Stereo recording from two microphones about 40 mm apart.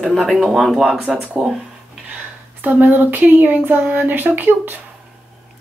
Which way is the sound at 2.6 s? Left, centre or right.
Right.